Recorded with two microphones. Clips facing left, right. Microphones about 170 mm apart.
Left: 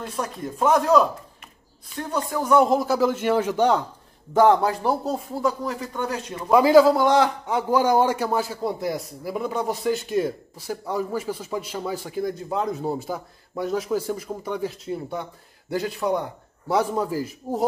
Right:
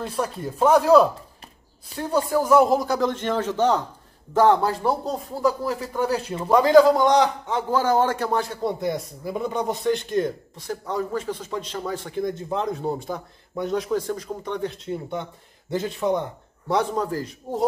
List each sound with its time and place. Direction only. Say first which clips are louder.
0.7 s a man's voice: right 4 dB; 5° right (ahead or behind)
1.9 s speech: right 2 dB; 35° right (ahead or behind)
2.3 s a man's voice: right 1 dB; centre (ahead or behind)
6.0 s speech: right 7 dB; 35° right (ahead or behind)
6.5 s a man's voice: even; 5° left (ahead or behind)